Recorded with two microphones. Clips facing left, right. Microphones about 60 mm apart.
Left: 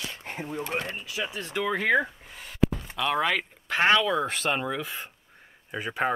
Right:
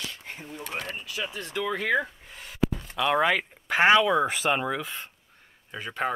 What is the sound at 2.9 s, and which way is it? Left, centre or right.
Speech, centre.